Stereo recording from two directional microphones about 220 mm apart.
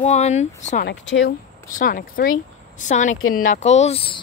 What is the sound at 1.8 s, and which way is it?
Speech, 40° left (ahead or behind).